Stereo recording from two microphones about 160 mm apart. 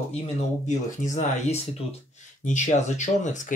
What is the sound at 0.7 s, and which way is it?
Speech, 50° left (ahead or behind).